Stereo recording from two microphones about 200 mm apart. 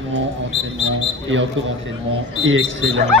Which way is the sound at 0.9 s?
70° right (ahead or behind).